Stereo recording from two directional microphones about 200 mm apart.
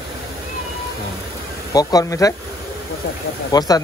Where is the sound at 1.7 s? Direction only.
20° left (ahead or behind).